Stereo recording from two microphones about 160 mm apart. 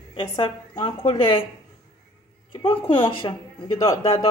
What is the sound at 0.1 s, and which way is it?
A woman's voice, 30° left (ahead or behind).